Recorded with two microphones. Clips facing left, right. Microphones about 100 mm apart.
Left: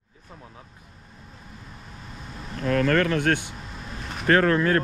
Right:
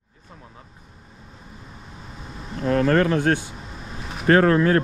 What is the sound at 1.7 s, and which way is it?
Vehicle, centre (ahead or behind).